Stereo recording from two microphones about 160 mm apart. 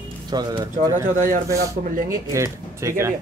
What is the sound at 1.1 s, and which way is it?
Speech, 55° right (ahead or behind).